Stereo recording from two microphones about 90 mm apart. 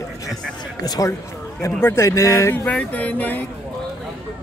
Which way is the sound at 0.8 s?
40° left (ahead or behind).